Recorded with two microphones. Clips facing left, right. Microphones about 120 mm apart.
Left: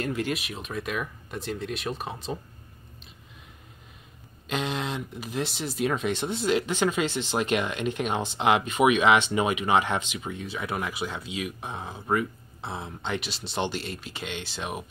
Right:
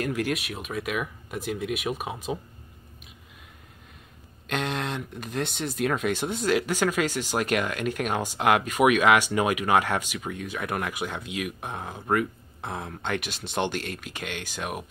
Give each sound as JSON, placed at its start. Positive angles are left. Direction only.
{"t": 0.0, "sound": "speech", "side_deg": -10}
{"t": 4.5, "sound": "speech", "side_deg": 0}
{"t": 12.1, "sound": "speech", "side_deg": 5}
{"t": 13.2, "sound": "speech", "side_deg": -55}
{"t": 14.1, "sound": "speech", "side_deg": -10}